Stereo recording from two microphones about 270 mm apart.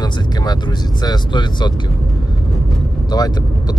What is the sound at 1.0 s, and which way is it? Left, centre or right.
Speech, centre.